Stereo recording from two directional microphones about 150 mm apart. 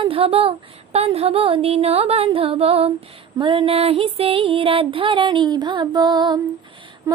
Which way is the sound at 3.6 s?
40° right (ahead or behind).